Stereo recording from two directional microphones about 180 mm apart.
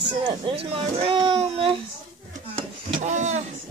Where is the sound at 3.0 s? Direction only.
40° right (ahead or behind).